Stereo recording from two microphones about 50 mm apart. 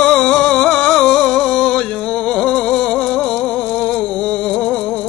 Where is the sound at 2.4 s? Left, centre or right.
Centre.